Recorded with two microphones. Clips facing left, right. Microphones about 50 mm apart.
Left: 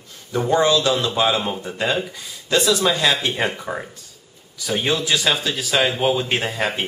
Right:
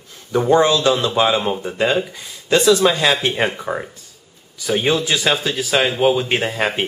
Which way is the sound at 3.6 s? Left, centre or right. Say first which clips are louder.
Right 4 dB; centre.